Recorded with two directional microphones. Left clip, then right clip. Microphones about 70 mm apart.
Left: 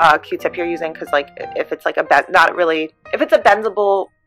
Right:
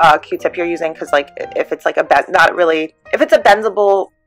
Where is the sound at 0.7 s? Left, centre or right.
Centre.